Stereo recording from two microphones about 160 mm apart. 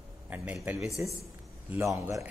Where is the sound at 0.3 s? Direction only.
10° right (ahead or behind).